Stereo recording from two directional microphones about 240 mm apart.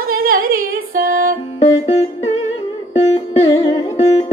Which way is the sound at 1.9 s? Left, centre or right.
Left.